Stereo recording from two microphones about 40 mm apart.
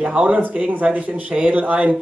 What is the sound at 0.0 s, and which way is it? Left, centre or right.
Speech, right.